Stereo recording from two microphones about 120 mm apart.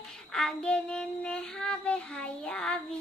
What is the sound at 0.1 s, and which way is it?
Child singing, 5° left (ahead or behind).